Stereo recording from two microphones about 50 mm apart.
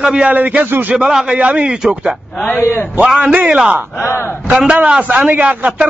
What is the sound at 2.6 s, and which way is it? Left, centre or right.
Speech, left.